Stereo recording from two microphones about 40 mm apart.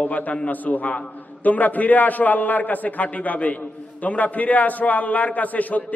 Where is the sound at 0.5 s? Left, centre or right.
Left.